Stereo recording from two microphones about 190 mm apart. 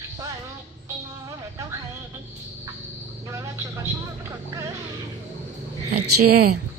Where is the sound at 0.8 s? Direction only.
15° right (ahead or behind).